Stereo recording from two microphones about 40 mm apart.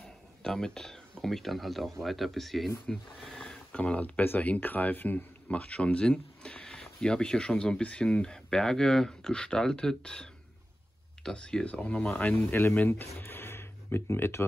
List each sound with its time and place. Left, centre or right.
0.0 s a sound: centre
1.2 s speech: centre
2.9 s speech: centre
3.7 s speech: left
4.0 s speech: left
4.4 s speech: left
5.5 s a sound: left
7.0 s speech: centre
12.1 s speech: left
13.2 s a sound: left